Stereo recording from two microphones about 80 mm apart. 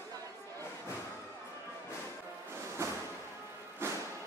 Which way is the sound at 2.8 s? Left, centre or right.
Right.